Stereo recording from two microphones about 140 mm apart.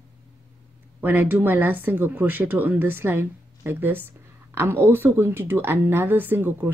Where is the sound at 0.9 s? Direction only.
15° right (ahead or behind).